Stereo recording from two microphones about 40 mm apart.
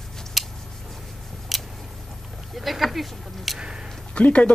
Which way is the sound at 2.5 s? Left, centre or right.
Centre.